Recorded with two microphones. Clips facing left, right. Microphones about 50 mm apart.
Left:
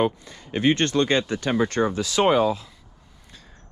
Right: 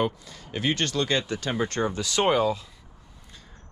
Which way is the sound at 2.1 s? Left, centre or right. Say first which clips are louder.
Left 3 dB; left.